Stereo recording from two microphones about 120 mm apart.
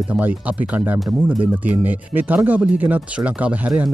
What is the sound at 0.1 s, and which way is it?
Speech, 10° right (ahead or behind).